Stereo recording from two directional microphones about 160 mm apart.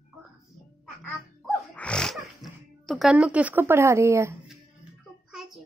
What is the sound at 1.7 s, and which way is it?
Music, 5° left (ahead or behind).